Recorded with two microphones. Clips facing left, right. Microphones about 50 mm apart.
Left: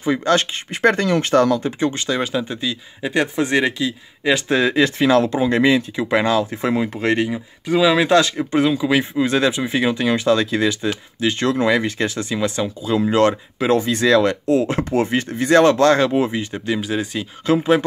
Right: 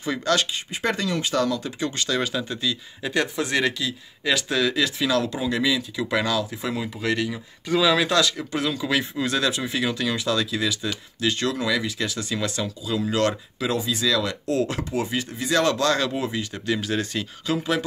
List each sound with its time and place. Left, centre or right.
0.0 s speech: left
1.8 s speech: left
5.9 s speech: left
7.6 s speech: centre
13.7 s speech: left
14.4 s speech: left
14.8 s speech: left; by 17.3 s centre
17.5 s speech: left